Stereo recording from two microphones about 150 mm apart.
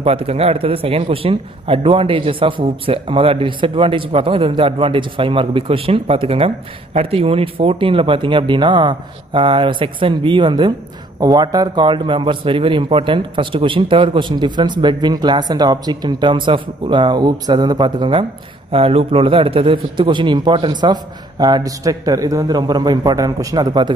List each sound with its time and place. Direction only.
0.0 s a man's voice: 40° right (ahead or behind)